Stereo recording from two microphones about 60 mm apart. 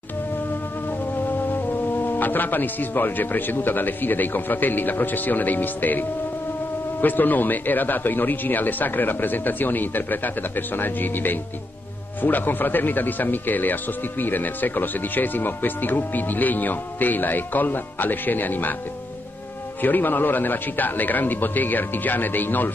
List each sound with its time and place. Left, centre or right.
1.5 s speech: left
19.8 s speech: left